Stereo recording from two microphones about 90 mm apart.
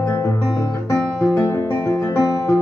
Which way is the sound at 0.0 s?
35° left (ahead or behind).